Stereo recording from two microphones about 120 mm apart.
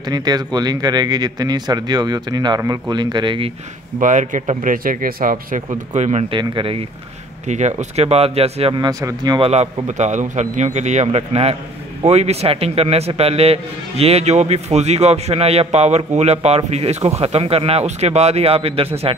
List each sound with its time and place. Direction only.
0.0 s speech: 35° right (ahead or behind)
4.0 s a man's voice: 90° right
5.7 s a man's voice: 75° right (ahead or behind)
6.3 s speech: 45° right (ahead or behind)
7.4 s a man's voice: 75° right (ahead or behind); by 8.7 s 55° right (ahead or behind)
8.7 s speech: 35° right (ahead or behind)
9.4 s a man's voice: 60° right (ahead or behind)
9.8 s a man's voice: 75° right (ahead or behind); by 19.1 s 55° right (ahead or behind)